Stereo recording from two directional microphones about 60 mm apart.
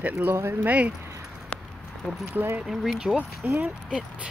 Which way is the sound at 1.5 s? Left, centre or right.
Left.